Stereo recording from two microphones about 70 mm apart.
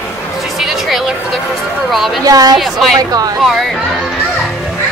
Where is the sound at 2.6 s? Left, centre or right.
Centre.